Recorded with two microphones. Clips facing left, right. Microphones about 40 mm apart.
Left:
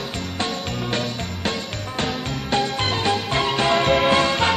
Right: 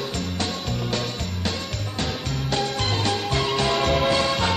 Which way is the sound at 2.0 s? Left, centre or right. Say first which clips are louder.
Left 3 dB; left.